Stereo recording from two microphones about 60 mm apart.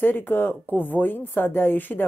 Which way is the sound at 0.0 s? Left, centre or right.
Left.